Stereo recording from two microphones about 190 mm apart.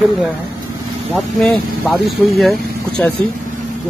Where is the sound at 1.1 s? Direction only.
Centre (ahead or behind).